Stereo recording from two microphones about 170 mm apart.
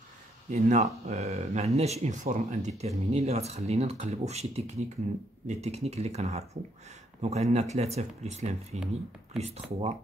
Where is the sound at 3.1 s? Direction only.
40° right (ahead or behind).